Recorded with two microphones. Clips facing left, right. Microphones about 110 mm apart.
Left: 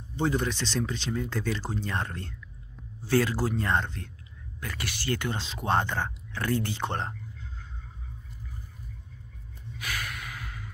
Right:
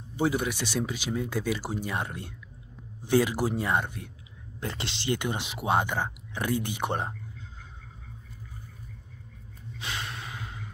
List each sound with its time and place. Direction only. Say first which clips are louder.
0.1 s speech: right 1 dB; 10° right (ahead or behind)
4.6 s speech: right 2 dB; 25° right (ahead or behind)
9.8 s snort: even; 25° right (ahead or behind)